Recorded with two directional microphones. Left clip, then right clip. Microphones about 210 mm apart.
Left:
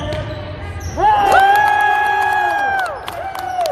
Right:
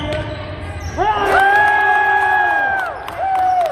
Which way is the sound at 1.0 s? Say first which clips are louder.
Left 3 dB; 50° left (ahead or behind).